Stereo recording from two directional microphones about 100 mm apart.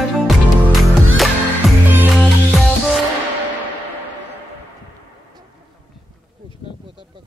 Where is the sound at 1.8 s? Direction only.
20° right (ahead or behind).